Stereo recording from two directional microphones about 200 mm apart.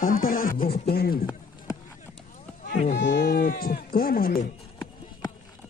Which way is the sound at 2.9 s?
60° left (ahead or behind).